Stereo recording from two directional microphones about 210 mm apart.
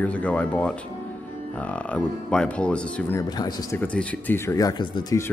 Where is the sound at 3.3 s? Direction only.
15° left (ahead or behind).